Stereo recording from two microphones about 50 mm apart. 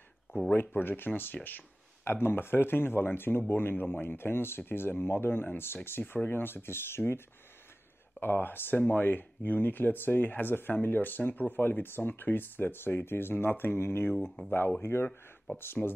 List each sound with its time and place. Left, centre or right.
0.6 s speech: left
8.2 s speech: left
14.8 s speech: left